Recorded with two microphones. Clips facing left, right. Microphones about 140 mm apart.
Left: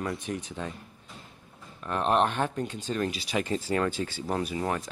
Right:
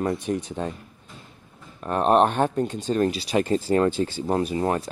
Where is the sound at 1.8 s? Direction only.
40° right (ahead or behind).